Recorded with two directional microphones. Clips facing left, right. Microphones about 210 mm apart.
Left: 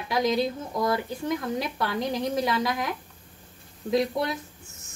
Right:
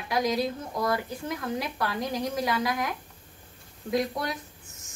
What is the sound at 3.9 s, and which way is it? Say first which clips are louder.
Speech: left 3 dB; 25° left (ahead or behind).